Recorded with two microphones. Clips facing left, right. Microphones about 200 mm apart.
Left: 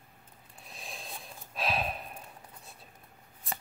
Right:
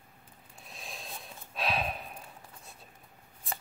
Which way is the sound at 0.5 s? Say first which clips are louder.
Even; centre (ahead or behind).